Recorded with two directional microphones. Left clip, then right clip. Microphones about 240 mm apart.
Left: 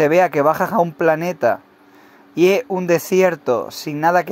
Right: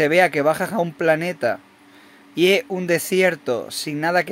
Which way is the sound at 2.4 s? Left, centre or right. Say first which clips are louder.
Left 2 dB; centre.